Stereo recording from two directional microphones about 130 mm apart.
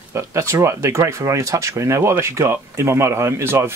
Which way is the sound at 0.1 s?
20° right (ahead or behind).